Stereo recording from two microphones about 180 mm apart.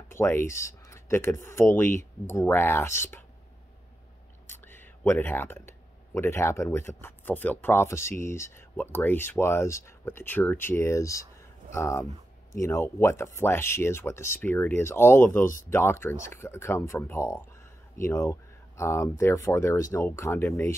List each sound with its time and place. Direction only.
0.1 s speech: 15° left (ahead or behind)
4.5 s speech: 10° left (ahead or behind)